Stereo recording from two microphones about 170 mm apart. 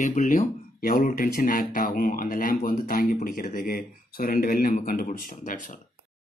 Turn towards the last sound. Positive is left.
turn(degrees=50)  # may be behind; listen again after turning